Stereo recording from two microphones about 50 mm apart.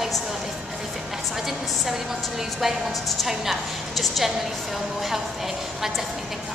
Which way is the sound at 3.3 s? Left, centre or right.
Centre.